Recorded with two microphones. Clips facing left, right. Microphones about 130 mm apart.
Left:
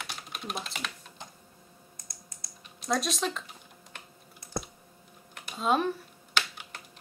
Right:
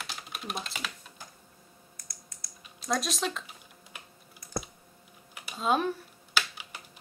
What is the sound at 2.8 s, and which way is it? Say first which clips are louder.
Speech: left 1 dB; centre (ahead or behind).